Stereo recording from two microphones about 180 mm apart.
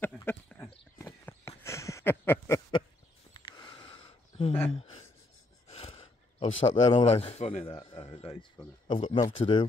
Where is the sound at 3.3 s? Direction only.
25° left (ahead or behind).